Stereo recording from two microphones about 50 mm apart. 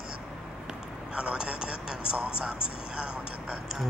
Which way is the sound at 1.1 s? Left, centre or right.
Centre.